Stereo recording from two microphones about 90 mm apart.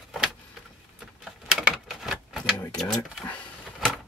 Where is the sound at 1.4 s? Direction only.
5° right (ahead or behind).